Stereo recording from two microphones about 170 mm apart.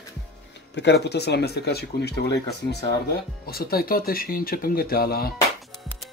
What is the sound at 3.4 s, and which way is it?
Speech, 60° left (ahead or behind).